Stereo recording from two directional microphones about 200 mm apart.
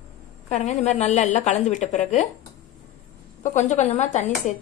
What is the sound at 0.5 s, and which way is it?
A woman's voice, 35° left (ahead or behind).